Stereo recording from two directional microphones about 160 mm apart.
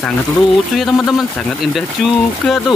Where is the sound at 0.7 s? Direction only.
Centre (ahead or behind).